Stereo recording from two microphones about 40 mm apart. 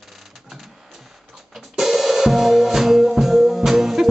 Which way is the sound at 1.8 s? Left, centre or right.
Centre.